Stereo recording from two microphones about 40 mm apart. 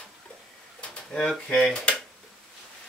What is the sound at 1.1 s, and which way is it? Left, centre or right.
Speech, centre.